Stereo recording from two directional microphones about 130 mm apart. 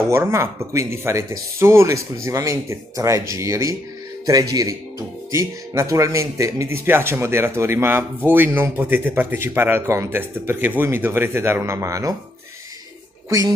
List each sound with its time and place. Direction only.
0.1 s speech: 20° right (ahead or behind)